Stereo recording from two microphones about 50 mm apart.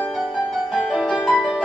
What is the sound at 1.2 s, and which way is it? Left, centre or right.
Music, centre.